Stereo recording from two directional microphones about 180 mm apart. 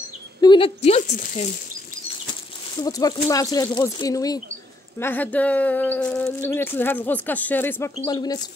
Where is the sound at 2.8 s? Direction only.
20° left (ahead or behind).